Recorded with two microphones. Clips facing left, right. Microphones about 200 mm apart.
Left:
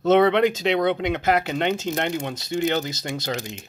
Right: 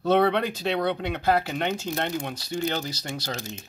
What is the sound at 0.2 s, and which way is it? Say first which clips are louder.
Speech: left 5 dB; 90° left.